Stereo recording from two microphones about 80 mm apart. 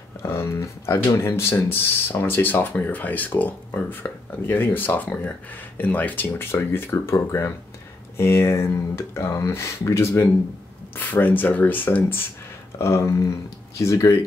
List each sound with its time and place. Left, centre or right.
0.2 s speech: left
11.0 s speech: left
12.7 s speech: left